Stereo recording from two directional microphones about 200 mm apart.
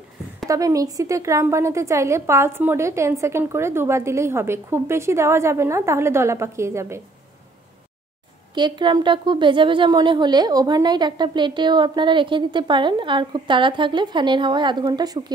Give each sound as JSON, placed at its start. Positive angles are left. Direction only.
{"t": 0.5, "sound": "a woman's voice", "side_deg": -15}
{"t": 8.5, "sound": "a woman's voice", "side_deg": -20}